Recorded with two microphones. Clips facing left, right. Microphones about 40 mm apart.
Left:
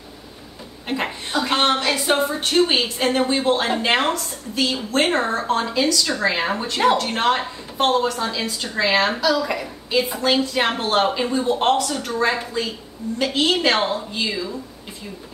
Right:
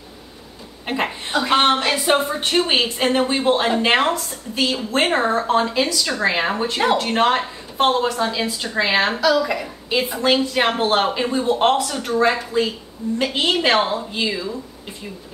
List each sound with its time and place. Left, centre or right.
0.8 s a woman's voice: centre